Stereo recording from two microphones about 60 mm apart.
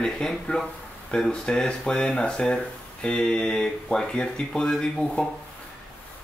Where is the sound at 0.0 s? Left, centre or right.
Centre.